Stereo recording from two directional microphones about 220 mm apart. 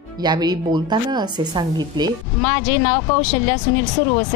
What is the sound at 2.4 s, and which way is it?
Speech, 15° left (ahead or behind).